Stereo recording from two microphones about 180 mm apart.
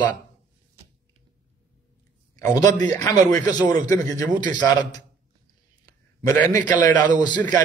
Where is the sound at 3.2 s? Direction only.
20° left (ahead or behind).